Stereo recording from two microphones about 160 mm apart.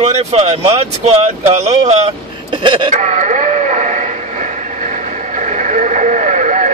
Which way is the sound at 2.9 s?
50° right (ahead or behind).